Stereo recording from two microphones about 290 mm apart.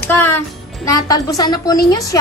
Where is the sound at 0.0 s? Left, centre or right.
Centre.